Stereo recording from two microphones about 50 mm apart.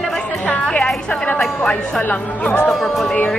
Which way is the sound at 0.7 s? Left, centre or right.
Left.